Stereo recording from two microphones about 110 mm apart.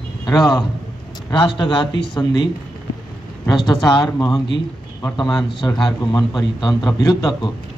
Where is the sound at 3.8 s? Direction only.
40° left (ahead or behind).